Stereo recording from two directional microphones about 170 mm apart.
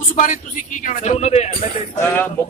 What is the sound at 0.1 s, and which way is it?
A man's voice, 50° left (ahead or behind).